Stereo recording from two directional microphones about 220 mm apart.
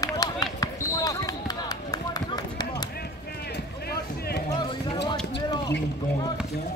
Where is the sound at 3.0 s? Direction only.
45° left (ahead or behind).